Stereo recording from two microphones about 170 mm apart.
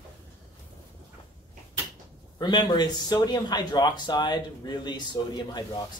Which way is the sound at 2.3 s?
25° left (ahead or behind).